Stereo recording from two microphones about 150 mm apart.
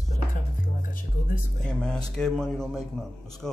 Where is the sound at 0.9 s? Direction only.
70° left (ahead or behind).